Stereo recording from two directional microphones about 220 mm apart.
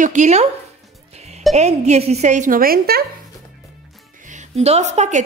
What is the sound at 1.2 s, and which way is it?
Music, 30° right (ahead or behind).